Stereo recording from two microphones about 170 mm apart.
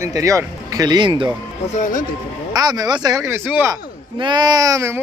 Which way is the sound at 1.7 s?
50° left (ahead or behind).